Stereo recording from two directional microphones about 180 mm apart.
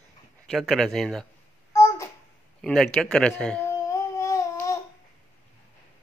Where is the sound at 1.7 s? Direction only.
20° left (ahead or behind).